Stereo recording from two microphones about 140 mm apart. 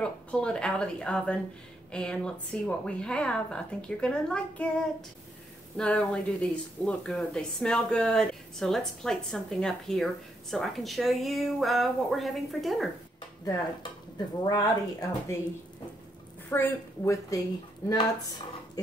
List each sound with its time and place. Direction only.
0.0 s a woman's voice: 5° left (ahead or behind)
5.8 s speech: 5° left (ahead or behind)
14.4 s a woman's voice: 25° left (ahead or behind)
16.4 s a woman's voice: 20° left (ahead or behind)